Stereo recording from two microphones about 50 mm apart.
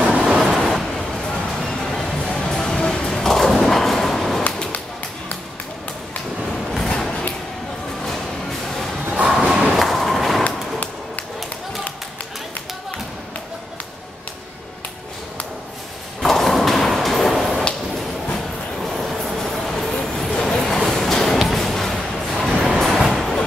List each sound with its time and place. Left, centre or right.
0.0 s vehicle: right
0.5 s vehicle: centre
1.8 s music: centre
3.1 s thump: centre
6.5 s a sound: centre
6.9 s music: centre
9.2 s a sound: centre
9.7 s a sound: centre
16.2 s thump: centre
18.9 s vehicle: centre
20.3 s a sound: centre
21.4 s music: centre
22.8 s train: centre